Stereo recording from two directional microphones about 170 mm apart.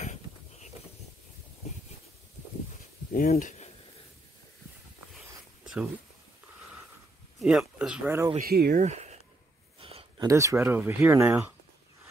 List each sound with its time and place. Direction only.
0.0 s a sound: 45° left (ahead or behind)
3.1 s speech: 55° left (ahead or behind)
7.3 s speech: 5° right (ahead or behind)
8.4 s speech: 65° right (ahead or behind)
8.8 s a sound: 40° right (ahead or behind)
10.2 s speech: 15° right (ahead or behind)